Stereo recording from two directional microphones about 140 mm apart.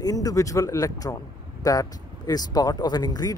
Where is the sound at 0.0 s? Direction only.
25° left (ahead or behind).